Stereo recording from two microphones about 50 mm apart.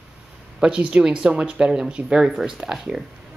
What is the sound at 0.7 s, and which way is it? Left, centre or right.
A woman's voice, right.